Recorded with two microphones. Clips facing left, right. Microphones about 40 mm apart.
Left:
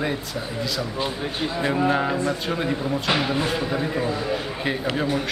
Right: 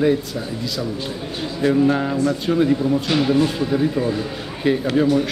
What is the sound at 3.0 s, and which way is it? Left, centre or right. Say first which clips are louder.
A man's voice: right 5 dB; centre.